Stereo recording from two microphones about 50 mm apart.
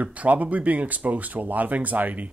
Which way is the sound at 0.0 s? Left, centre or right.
Right.